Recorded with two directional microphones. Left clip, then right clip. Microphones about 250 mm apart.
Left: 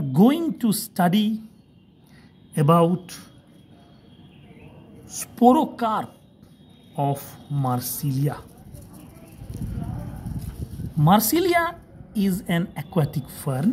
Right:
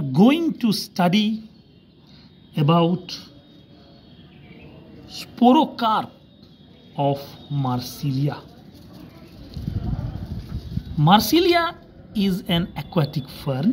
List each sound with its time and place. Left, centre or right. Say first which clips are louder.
0.1 s a woman's voice: right 2 dB; centre
2.5 s speech: left 1 dB; left
5.0 s a woman's voice: even; centre
7.0 s speech: right 3 dB; left
11.0 s a woman's voice: right 3 dB; centre